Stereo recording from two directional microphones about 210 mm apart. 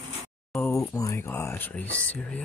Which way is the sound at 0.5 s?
15° left (ahead or behind).